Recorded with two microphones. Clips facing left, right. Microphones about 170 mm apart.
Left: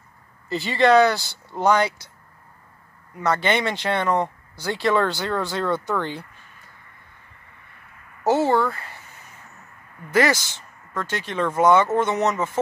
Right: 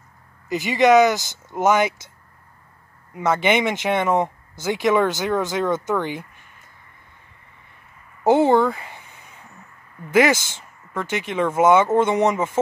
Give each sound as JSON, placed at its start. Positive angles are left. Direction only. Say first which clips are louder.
{"t": 0.5, "sound": "speech", "louder": "right 2 dB", "side_deg": -15}
{"t": 3.2, "sound": "speech", "louder": "right 3 dB", "side_deg": -10}
{"t": 8.3, "sound": "a sound", "louder": "right 4 dB", "side_deg": -20}
{"t": 10.9, "sound": "speech", "louder": "right 3 dB", "side_deg": -10}